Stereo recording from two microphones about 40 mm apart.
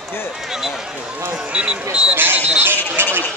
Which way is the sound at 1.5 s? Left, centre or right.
Right.